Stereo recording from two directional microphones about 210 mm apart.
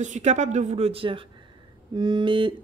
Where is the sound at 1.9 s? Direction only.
20° right (ahead or behind).